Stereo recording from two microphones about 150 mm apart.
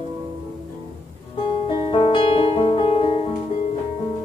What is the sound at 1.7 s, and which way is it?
Music, 35° left (ahead or behind).